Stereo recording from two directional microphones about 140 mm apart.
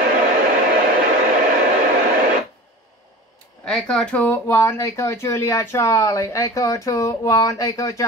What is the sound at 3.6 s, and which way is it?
Speech, 5° left (ahead or behind).